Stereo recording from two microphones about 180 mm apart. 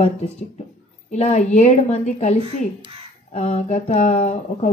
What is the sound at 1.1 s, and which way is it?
Speech, 40° left (ahead or behind).